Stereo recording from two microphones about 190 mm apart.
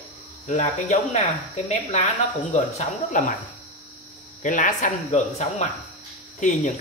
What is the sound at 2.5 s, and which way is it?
Speech, 40° left (ahead or behind).